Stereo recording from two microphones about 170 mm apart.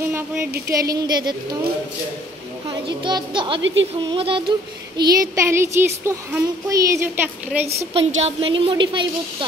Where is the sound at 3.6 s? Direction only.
90° right.